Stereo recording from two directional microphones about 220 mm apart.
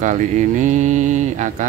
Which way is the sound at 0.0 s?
35° right (ahead or behind).